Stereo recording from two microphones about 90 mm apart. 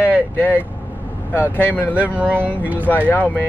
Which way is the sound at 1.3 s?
20° left (ahead or behind).